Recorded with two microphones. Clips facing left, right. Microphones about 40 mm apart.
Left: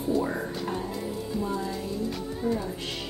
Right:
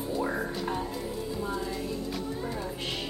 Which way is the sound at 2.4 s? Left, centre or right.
Centre.